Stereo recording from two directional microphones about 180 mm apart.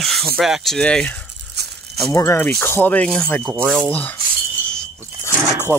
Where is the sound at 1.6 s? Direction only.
65° right (ahead or behind).